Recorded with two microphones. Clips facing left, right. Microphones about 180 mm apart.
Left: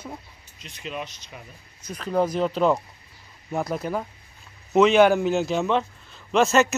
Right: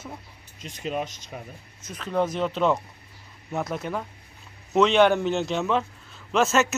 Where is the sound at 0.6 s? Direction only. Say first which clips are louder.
Right 4 dB; 45° right (ahead or behind).